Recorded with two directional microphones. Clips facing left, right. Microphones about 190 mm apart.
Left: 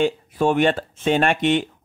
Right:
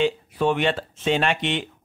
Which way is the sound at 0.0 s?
45° left (ahead or behind).